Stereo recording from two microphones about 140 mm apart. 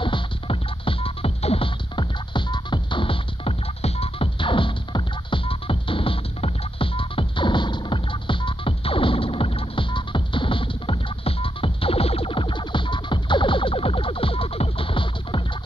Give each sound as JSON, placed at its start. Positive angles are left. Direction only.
{"t": 0.0, "sound": "music", "side_deg": 40}